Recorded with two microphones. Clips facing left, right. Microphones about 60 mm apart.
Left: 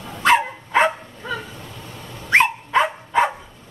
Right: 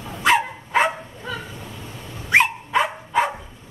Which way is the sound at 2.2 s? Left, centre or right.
Centre.